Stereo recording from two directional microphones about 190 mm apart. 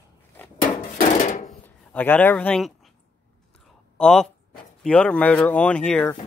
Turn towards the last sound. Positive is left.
turn(degrees=5)  # may be behind; listen again after turning